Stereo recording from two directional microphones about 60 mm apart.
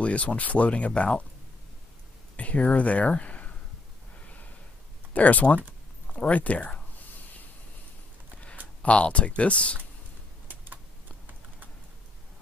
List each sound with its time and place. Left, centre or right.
0.0 s speech: left
2.3 s speech: left
5.1 s speech: left
8.8 s speech: left
10.5 s computer keyboard: right